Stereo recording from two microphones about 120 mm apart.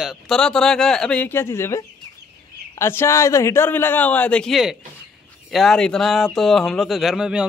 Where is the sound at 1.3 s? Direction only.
20° left (ahead or behind).